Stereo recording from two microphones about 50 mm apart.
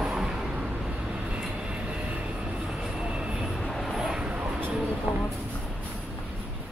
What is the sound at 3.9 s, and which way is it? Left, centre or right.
Vehicle, centre.